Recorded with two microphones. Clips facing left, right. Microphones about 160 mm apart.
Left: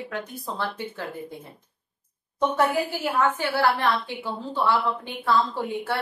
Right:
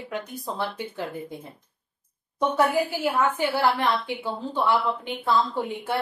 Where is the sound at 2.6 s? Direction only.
10° right (ahead or behind).